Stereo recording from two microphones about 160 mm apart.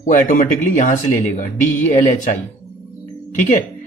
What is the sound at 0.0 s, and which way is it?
Speech, 50° left (ahead or behind).